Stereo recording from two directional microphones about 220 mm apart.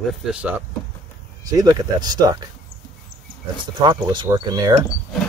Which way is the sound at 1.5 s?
15° right (ahead or behind).